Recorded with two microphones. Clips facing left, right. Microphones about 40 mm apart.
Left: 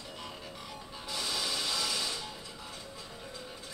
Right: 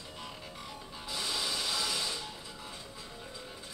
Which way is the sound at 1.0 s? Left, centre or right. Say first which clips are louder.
Even; right.